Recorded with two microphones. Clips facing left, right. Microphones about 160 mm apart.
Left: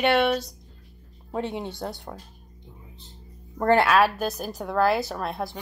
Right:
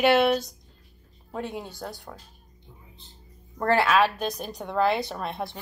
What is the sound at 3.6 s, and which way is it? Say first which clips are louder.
Speech: left 3 dB; 20° left (ahead or behind).